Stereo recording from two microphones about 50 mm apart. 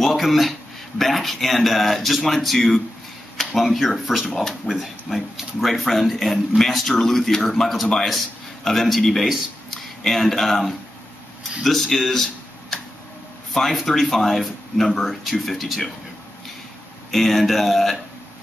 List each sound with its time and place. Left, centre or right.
0.0 s a man's voice: centre
17.1 s a man's voice: centre